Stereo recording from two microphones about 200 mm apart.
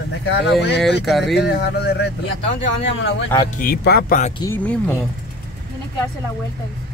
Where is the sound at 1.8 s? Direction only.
55° left (ahead or behind).